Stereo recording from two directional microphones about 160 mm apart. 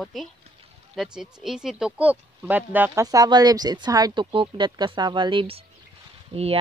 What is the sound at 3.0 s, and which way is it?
Speech, 25° right (ahead or behind).